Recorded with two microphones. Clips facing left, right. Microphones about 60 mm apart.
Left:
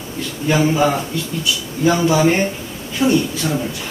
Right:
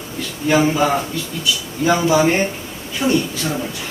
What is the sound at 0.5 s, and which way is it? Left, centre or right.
A man's voice, right.